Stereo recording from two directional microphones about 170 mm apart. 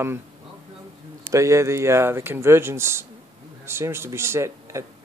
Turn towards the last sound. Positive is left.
turn(degrees=-15)  # may be behind; listen again after turning